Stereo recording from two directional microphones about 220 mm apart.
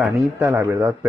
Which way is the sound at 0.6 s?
10° right (ahead or behind).